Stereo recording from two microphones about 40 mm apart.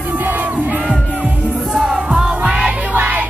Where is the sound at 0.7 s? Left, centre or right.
Right.